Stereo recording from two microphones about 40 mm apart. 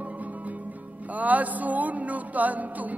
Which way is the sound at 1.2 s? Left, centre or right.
Right.